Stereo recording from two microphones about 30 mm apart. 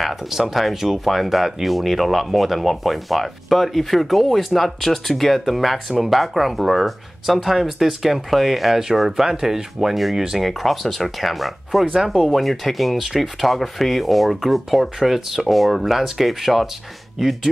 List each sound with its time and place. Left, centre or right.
0.3 s speech: centre
9.8 s speech: centre
10.1 s speech: centre
10.4 s speech: centre
11.8 s speech: right
12.3 s speech: centre